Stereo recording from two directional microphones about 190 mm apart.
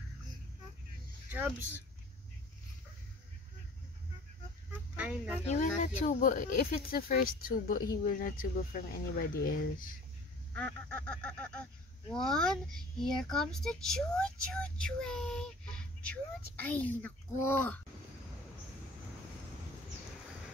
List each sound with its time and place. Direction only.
1.3 s speech: 10° right (ahead or behind)
4.9 s speech: 5° right (ahead or behind)
5.4 s speech: 35° left (ahead or behind)
10.5 s goose: 10° left (ahead or behind)
12.2 s a child's voice: 5° left (ahead or behind)